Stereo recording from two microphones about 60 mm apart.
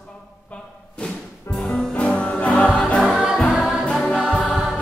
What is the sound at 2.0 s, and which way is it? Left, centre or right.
Music, left.